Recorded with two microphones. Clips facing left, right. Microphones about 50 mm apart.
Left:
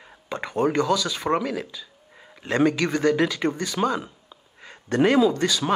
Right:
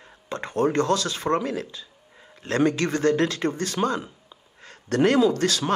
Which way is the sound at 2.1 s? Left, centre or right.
Centre.